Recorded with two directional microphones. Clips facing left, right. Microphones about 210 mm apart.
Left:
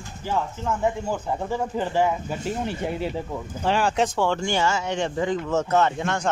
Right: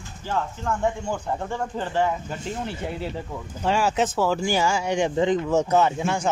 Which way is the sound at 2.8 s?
20° left (ahead or behind).